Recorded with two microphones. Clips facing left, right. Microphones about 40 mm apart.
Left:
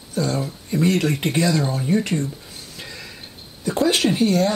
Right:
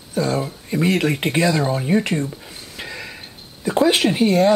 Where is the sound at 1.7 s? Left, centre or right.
Right.